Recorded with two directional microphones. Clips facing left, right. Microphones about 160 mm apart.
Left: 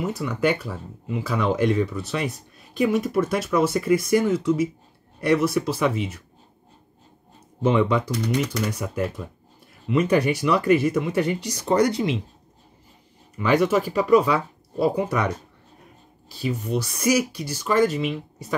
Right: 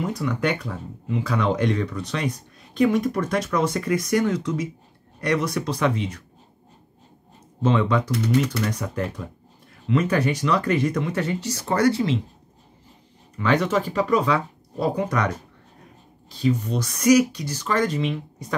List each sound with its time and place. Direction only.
0.0 s speech: 5° left (ahead or behind)
7.6 s speech: 10° left (ahead or behind)
13.4 s speech: 10° left (ahead or behind)